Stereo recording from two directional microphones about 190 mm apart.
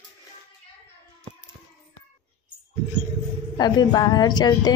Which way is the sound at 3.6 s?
20° left (ahead or behind).